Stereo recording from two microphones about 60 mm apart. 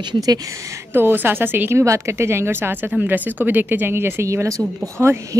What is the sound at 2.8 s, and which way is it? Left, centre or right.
Speech, right.